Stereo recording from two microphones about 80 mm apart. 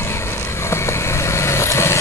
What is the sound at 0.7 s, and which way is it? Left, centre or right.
Vehicle, left.